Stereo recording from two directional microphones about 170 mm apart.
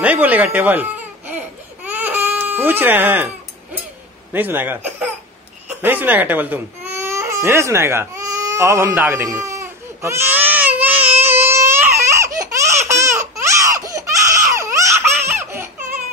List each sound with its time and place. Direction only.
0.0 s speech: 10° right (ahead or behind)
1.9 s baby cry: 10° right (ahead or behind)
4.3 s speech: 10° right (ahead or behind)
5.7 s baby cry: 10° right (ahead or behind)
14.5 s laughter: 15° right (ahead or behind)